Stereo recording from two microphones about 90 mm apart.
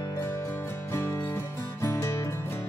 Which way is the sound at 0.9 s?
30° left (ahead or behind).